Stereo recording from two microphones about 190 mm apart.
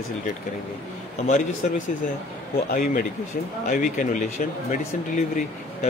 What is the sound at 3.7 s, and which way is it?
Speech, 40° left (ahead or behind).